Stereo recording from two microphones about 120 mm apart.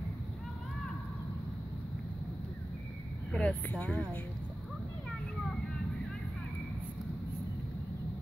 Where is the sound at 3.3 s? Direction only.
10° left (ahead or behind).